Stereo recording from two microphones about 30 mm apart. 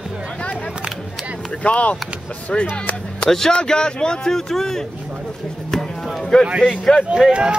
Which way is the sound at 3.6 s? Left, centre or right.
Left.